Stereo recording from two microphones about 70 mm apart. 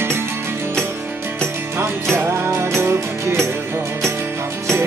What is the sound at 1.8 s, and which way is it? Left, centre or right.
Music, right.